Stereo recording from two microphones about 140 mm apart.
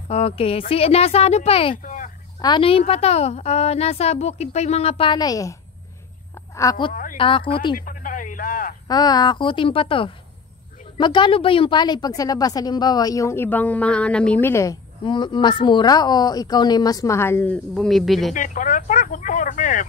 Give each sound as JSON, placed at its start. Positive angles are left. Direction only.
{"t": 0.1, "sound": "a woman's voice", "side_deg": 45}
{"t": 1.8, "sound": "a sound", "side_deg": 65}
{"t": 2.4, "sound": "a woman's voice", "side_deg": 35}
{"t": 6.9, "sound": "music", "side_deg": 75}
{"t": 7.2, "sound": "a woman's voice", "side_deg": 40}
{"t": 7.7, "sound": "a sound", "side_deg": 75}
{"t": 8.8, "sound": "a woman's voice", "side_deg": 30}
{"t": 15.0, "sound": "a woman's voice", "side_deg": 35}
{"t": 17.7, "sound": "speech", "side_deg": 0}
{"t": 18.3, "sound": "speech", "side_deg": 65}